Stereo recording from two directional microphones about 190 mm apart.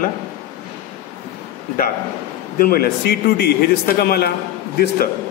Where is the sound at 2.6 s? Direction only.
50° left (ahead or behind).